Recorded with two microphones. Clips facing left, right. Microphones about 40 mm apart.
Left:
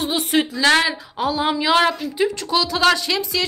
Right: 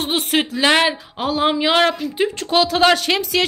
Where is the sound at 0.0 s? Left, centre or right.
Right.